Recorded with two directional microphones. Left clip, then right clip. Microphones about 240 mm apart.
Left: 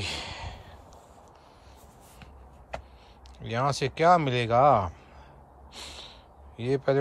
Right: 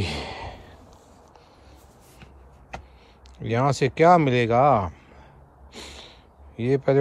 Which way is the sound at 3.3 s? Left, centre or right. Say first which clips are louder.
Right 5 dB; centre.